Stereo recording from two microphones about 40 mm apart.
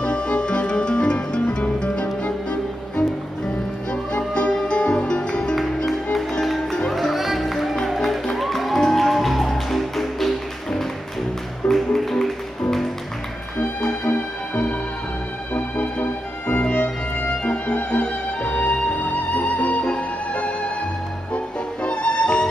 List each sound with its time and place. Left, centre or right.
0.0 s music: left
4.3 s music: left
6.9 s music: centre
11.7 s music: centre
14.0 s music: left
21.8 s music: left